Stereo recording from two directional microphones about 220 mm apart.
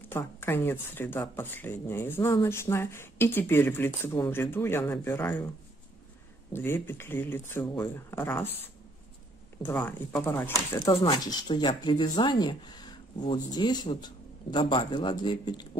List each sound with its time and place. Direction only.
0.1 s speech: 10° left (ahead or behind)
6.5 s speech: 10° left (ahead or behind)
9.6 s speech: 10° left (ahead or behind)
10.9 s speech: 20° left (ahead or behind)